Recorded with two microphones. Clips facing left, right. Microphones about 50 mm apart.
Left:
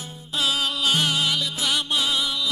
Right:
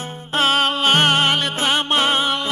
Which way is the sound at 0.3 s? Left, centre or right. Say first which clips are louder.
Right 7 dB; right.